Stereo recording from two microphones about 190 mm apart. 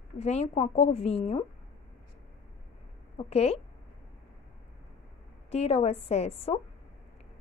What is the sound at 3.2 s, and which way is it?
Speech, 30° left (ahead or behind).